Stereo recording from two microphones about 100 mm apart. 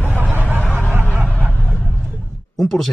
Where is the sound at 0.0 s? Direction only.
20° right (ahead or behind).